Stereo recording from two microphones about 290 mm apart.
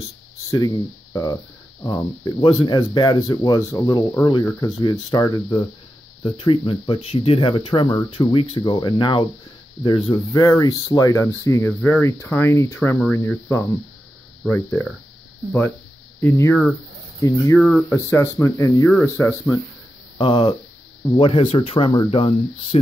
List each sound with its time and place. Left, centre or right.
1.8 s speech: centre
16.2 s speech: centre